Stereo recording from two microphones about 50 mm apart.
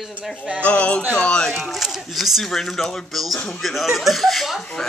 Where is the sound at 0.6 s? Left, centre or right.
Left.